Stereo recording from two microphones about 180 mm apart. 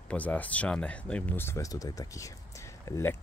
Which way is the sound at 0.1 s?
10° left (ahead or behind).